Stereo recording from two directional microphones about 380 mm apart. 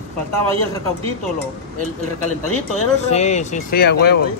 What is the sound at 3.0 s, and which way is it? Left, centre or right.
Speech, centre.